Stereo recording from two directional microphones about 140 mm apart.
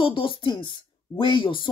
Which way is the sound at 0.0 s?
40° left (ahead or behind).